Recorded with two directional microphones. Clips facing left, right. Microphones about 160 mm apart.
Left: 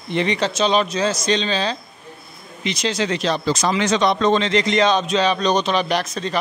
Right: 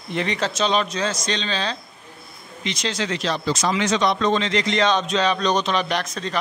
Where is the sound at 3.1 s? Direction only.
20° left (ahead or behind).